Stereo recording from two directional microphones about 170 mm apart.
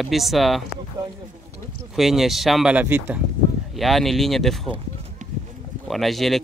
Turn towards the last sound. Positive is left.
turn(degrees=0)  # may be behind; listen again after turning